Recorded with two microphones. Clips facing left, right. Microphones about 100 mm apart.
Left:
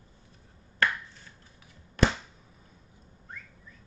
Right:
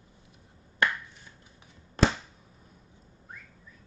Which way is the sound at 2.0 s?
35° right (ahead or behind).